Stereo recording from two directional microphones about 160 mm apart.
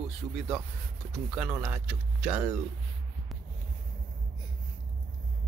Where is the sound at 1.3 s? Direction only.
10° right (ahead or behind).